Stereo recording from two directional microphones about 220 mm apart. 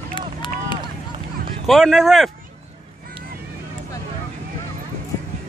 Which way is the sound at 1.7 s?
Centre (ahead or behind).